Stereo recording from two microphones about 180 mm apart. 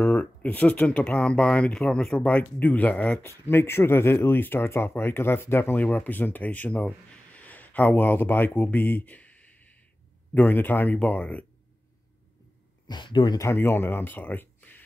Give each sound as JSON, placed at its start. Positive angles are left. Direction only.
{"t": 0.0, "sound": "speech", "side_deg": 10}
{"t": 10.3, "sound": "speech", "side_deg": 10}
{"t": 12.8, "sound": "speech", "side_deg": 25}